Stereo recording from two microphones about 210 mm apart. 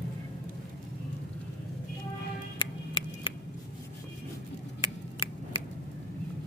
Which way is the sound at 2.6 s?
25° left (ahead or behind).